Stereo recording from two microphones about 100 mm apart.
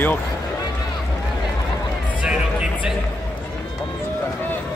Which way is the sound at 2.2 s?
10° right (ahead or behind).